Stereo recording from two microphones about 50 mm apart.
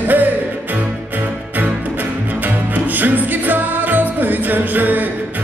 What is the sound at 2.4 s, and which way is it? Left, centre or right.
Music, right.